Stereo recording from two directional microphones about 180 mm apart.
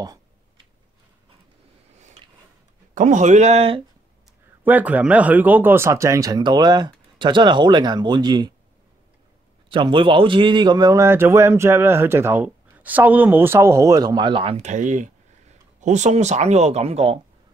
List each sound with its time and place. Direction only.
2.9 s speech: 45° right (ahead or behind)
4.6 s speech: 10° right (ahead or behind)
9.7 s a man's voice: 25° right (ahead or behind)